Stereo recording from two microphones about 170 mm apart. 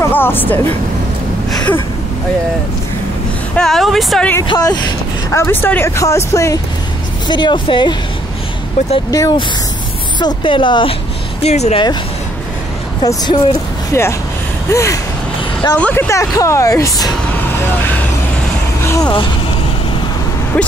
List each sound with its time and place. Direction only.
0.0 s speech: 10° left (ahead or behind)
3.5 s speech: centre (ahead or behind)
4.4 s speech: 20° left (ahead or behind)
9.1 s speech: 20° left (ahead or behind); by 11.8 s 40° left (ahead or behind)
13.0 s speech: 25° left (ahead or behind)
18.9 s speech: 25° left (ahead or behind)